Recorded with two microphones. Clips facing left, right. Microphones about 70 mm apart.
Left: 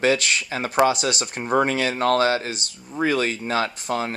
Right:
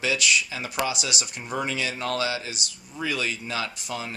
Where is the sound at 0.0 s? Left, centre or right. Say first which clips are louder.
Left 4 dB; left.